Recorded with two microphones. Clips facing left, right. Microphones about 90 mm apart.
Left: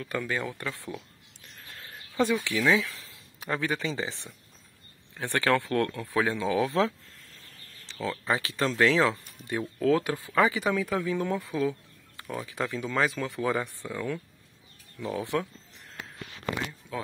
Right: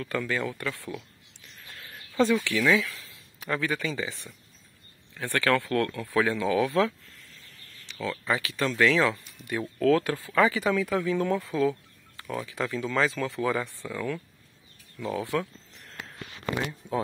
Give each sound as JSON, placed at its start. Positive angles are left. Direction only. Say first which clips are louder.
{"t": 0.0, "sound": "speech", "louder": "right 2 dB", "side_deg": 15}
{"t": 7.9, "sound": "speech", "louder": "even", "side_deg": 25}